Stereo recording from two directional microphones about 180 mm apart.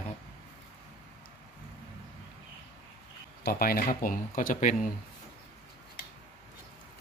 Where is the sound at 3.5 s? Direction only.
55° left (ahead or behind).